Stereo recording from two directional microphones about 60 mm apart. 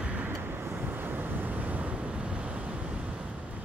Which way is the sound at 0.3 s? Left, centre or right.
Right.